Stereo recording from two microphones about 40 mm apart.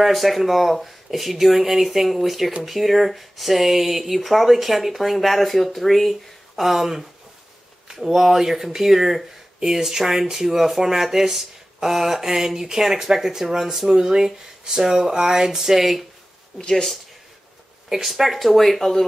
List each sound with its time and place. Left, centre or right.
0.0 s speech: centre
17.8 s speech: centre